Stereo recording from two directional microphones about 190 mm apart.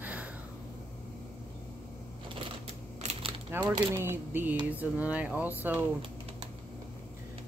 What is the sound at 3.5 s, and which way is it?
Speech, 10° right (ahead or behind).